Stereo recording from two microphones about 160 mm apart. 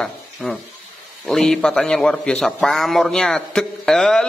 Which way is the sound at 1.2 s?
5° left (ahead or behind).